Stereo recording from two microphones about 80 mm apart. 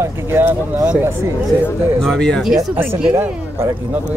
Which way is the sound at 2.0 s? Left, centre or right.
Centre.